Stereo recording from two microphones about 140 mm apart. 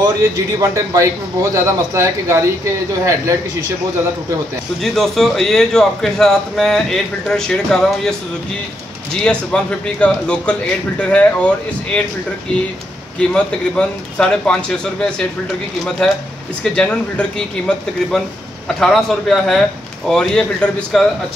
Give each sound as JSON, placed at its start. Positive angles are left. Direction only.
{"t": 0.0, "sound": "a man's voice", "side_deg": -25}
{"t": 4.8, "sound": "a man's voice", "side_deg": 0}
{"t": 9.2, "sound": "speech", "side_deg": 5}
{"t": 13.3, "sound": "speech", "side_deg": 5}
{"t": 16.6, "sound": "a man's voice", "side_deg": 5}